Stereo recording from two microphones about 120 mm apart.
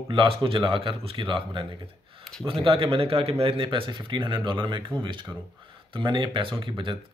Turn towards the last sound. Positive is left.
turn(degrees=-45)  # may be behind; listen again after turning